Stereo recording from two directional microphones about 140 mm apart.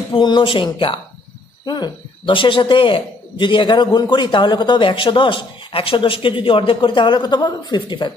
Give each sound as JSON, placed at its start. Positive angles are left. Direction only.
{"t": 0.1, "sound": "a man's voice", "side_deg": 35}